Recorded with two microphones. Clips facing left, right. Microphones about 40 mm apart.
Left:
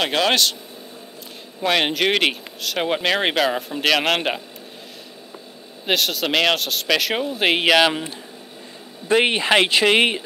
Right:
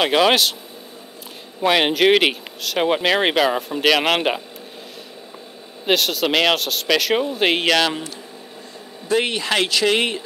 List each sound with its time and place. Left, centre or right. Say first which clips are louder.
0.0 s speech: right 3 dB; centre
1.6 s speech: right 3 dB; centre
5.9 s speech: right 2 dB; centre
9.1 s speech: left 3 dB; left